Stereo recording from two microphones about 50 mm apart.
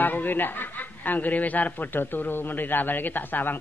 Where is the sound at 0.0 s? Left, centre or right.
Left.